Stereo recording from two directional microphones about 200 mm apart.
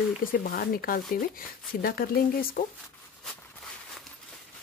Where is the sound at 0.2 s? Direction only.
45° left (ahead or behind).